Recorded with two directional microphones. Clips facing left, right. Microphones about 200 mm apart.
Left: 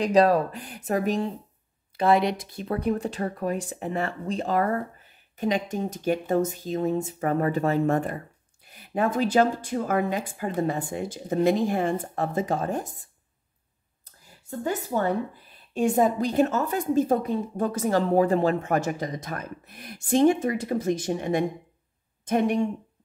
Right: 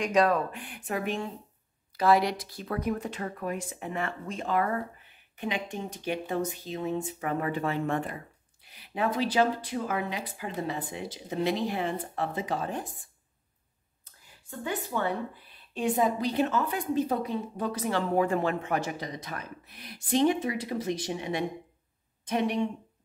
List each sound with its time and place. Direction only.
0.0 s speech: 35° left (ahead or behind)
2.0 s a woman's voice: 25° left (ahead or behind); by 13.1 s 40° left (ahead or behind)
14.0 s a sound: 40° left (ahead or behind)
15.7 s a woman's voice: 45° left (ahead or behind)